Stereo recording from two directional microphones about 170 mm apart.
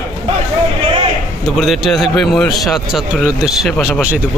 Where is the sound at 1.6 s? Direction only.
Centre (ahead or behind).